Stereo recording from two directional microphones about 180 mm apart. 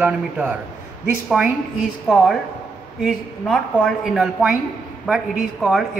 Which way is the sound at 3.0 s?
Centre (ahead or behind).